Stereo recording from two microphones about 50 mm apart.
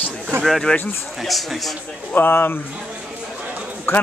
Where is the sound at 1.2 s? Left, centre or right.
Centre.